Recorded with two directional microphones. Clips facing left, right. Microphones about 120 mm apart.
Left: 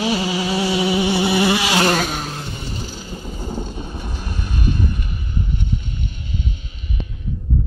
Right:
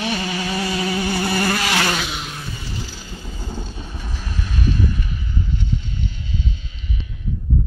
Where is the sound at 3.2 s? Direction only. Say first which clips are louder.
Left 4 dB; 20° left (ahead or behind).